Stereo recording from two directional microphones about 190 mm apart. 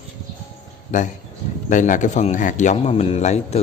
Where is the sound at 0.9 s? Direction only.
40° left (ahead or behind).